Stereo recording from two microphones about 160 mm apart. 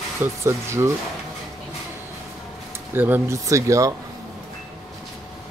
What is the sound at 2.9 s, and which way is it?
Speech, 10° right (ahead or behind).